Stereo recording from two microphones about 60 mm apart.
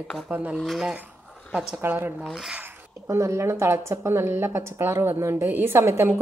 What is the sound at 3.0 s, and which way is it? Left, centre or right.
Speech, right.